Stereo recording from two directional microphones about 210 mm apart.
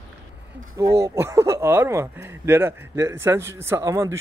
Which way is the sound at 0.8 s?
15° right (ahead or behind).